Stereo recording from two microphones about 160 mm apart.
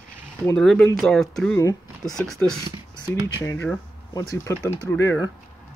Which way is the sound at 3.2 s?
20° left (ahead or behind).